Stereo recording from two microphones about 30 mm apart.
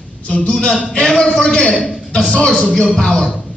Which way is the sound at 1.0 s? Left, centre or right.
Left.